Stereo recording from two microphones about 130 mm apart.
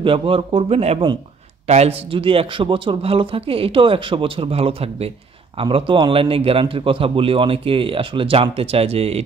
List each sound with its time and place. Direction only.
0.0 s a man's voice: 45° right (ahead or behind)